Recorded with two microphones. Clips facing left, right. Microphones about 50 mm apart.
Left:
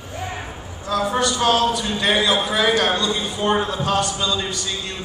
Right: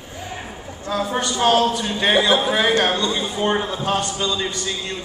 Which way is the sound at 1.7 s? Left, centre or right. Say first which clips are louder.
Right 2 dB; centre.